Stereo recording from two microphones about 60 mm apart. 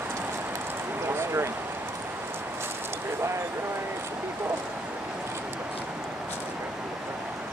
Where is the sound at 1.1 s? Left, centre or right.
Right.